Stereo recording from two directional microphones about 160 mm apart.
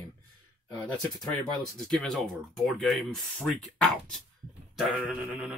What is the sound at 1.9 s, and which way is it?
Speech, 5° left (ahead or behind).